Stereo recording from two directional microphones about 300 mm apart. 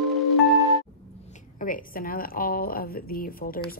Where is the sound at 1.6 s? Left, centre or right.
Left.